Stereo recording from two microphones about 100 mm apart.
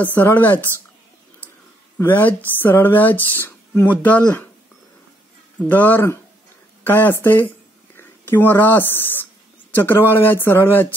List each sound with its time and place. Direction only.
0.0 s speech: 20° left (ahead or behind)
2.0 s speech: 20° left (ahead or behind)
5.6 s speech: 15° left (ahead or behind)